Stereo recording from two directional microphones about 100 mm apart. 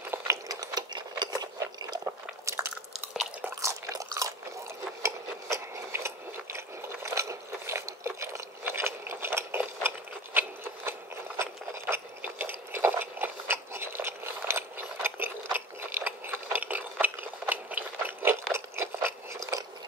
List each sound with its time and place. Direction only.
0.5 s ratchet: 40° right (ahead or behind)
2.0 s biting: 25° right (ahead or behind)
3.4 s a sound: 30° right (ahead or behind)